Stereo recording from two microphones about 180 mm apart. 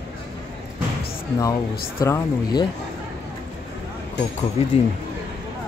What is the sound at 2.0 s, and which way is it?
Speech, 20° left (ahead or behind).